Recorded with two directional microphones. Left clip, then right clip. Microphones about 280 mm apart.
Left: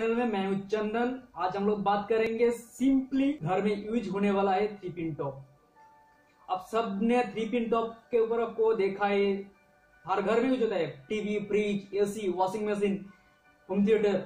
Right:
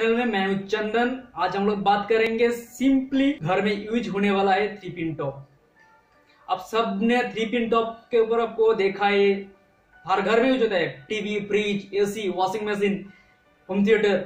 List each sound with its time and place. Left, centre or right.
0.0 s speech: centre
6.4 s speech: centre